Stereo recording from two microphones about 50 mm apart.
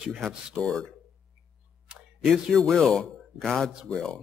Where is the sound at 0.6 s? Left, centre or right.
Right.